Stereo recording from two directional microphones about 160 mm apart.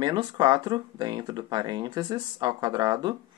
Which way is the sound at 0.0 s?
25° right (ahead or behind).